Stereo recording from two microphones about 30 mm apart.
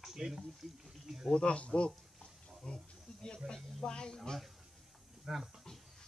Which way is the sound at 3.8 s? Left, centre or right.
Left.